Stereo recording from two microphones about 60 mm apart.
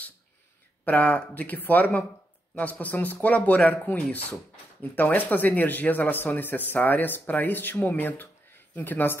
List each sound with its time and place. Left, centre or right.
0.8 s speech: left